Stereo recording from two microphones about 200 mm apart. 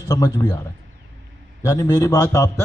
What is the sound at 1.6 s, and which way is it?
Speech, 15° left (ahead or behind).